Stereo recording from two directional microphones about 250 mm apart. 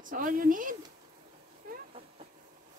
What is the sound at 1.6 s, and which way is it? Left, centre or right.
Vehicle, right.